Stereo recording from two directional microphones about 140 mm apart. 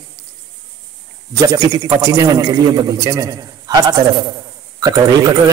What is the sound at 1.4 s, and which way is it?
A man's voice, 25° right (ahead or behind).